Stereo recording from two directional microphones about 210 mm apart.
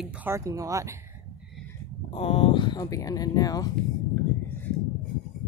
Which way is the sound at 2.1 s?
25° left (ahead or behind).